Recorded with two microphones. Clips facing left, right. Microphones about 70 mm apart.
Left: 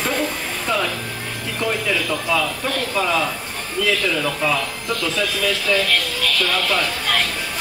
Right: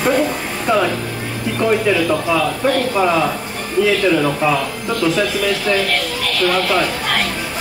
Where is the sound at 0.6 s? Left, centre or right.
Right.